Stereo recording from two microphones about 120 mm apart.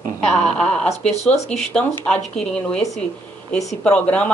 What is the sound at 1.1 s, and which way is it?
Speech, 65° left (ahead or behind).